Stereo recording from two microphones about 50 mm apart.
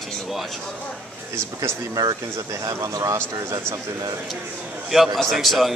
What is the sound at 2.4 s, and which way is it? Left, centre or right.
Speech, right.